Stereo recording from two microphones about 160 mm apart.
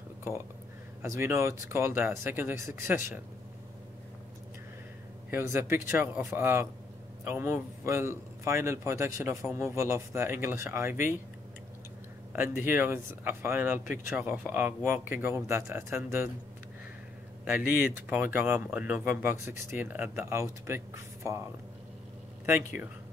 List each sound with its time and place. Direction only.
1.2 s speech: 15° right (ahead or behind)
5.3 s speech: 15° right (ahead or behind)
12.3 s speech: 10° right (ahead or behind)
18.1 s speech: 10° right (ahead or behind)